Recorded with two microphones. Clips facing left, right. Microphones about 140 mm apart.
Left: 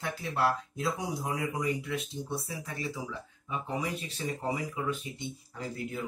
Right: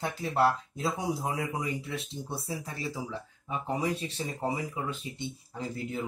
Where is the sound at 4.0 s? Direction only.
30° right (ahead or behind).